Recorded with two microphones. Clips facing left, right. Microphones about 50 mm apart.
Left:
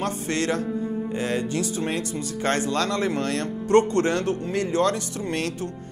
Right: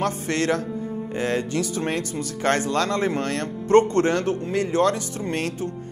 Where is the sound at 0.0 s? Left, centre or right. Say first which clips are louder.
Right 2 dB; right.